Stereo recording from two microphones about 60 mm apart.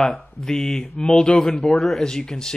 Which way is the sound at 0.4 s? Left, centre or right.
Centre.